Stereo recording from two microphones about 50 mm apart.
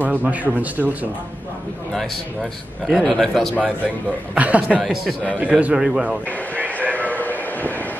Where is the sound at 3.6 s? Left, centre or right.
Right.